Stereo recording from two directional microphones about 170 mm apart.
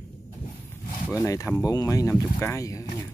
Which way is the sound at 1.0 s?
20° left (ahead or behind).